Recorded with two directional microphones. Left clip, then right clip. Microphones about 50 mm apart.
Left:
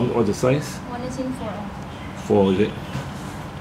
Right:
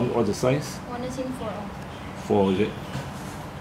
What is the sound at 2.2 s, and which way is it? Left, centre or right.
Speech, centre.